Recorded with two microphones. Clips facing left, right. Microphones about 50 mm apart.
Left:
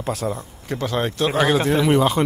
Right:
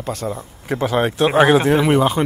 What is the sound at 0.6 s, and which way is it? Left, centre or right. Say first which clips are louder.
Speech: right 5 dB; centre.